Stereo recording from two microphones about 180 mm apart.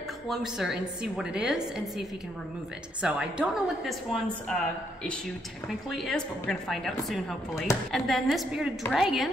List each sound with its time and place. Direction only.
0.3 s a woman's voice: centre (ahead or behind)